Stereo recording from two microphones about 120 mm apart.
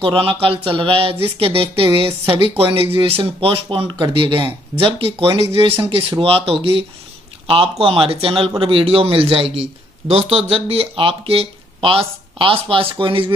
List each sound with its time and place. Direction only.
0.0 s speech: 50° right (ahead or behind)